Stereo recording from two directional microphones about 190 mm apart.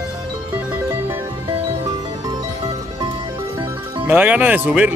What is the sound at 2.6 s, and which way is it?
Music, 30° right (ahead or behind).